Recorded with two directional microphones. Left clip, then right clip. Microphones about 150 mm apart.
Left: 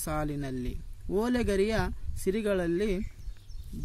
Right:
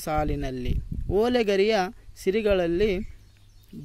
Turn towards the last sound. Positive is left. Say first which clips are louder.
# right 6 dB
turn(degrees=-15)  # may be behind; listen again after turning